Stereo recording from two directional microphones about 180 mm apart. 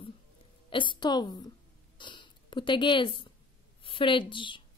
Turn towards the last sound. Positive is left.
turn(degrees=25)  # may be behind; listen again after turning